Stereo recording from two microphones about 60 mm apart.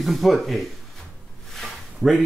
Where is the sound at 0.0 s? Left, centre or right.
Centre.